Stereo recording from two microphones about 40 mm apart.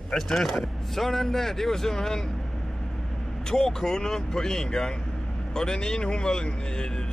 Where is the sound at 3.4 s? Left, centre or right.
Centre.